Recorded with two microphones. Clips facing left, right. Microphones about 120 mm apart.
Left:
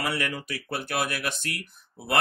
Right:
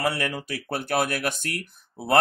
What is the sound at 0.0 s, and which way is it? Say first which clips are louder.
Speech: right 3 dB; 35° right (ahead or behind).